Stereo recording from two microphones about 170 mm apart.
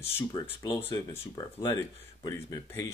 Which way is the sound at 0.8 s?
15° left (ahead or behind).